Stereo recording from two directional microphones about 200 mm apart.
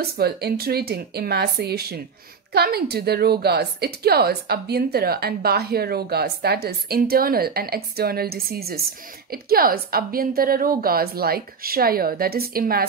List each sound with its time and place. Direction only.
0.0 s a woman's voice: 50° right (ahead or behind)